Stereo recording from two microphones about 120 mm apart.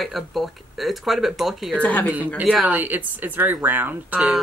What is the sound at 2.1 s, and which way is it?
Speech, 15° right (ahead or behind).